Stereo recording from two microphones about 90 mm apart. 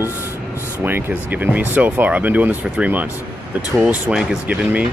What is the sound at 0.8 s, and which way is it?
Speech, 20° right (ahead or behind).